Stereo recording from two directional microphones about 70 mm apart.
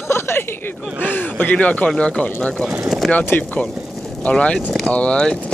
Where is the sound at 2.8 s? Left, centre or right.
Centre.